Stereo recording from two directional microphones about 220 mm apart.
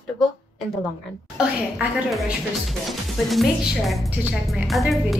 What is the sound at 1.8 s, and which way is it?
A woman's voice, 5° right (ahead or behind).